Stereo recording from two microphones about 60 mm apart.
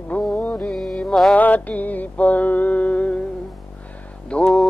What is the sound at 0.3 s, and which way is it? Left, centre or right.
Music, left.